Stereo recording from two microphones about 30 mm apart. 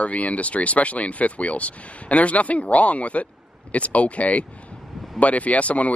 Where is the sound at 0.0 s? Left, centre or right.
Left.